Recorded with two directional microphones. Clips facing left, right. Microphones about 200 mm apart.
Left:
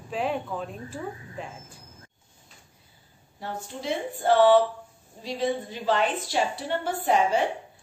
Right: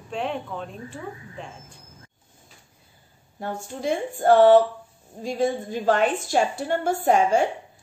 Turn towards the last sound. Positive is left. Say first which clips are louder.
# right 4 dB
turn(degrees=-45)  # may be behind; listen again after turning